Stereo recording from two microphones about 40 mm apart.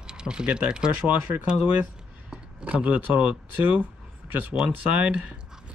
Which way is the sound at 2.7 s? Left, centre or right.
Right.